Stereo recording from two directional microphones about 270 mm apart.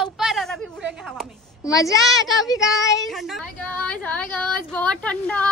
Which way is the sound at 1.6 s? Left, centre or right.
Centre.